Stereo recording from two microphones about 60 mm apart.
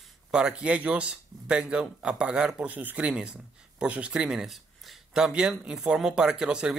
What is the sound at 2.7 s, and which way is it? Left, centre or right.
Speech, right.